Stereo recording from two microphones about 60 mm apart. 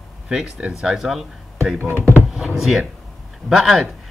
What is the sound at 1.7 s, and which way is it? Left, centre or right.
Speech, right.